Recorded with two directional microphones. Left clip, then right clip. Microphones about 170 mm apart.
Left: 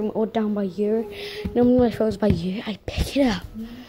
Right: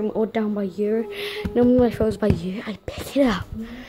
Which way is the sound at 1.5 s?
5° right (ahead or behind).